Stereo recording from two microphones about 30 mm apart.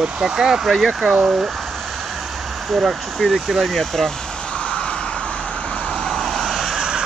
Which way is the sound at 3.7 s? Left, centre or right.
Centre.